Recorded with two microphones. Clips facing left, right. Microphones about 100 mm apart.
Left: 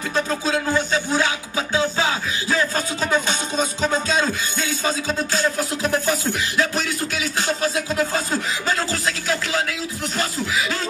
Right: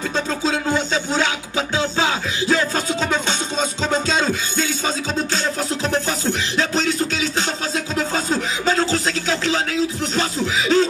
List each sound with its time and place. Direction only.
0.5 s music: 25° right (ahead or behind)
5.4 s music: 25° right (ahead or behind)
8.9 s music: 25° right (ahead or behind)
10.4 s snicker: 25° right (ahead or behind)